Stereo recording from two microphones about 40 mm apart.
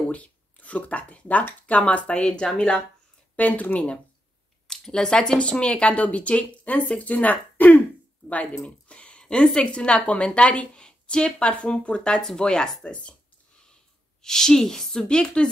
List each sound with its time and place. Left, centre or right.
0.1 s a sound: left
1.7 s speech: left
3.3 s speech: left
4.6 s speech: centre; by 7.8 s left
8.6 s a sound: left
9.4 s a woman's voice: centre
9.7 s speech: left
14.2 s a woman's voice: centre